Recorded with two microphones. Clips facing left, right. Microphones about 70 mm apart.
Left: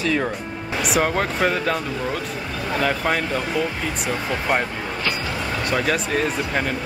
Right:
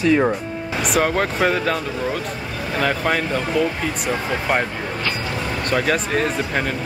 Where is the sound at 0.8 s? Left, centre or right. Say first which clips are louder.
Right 2 dB; centre.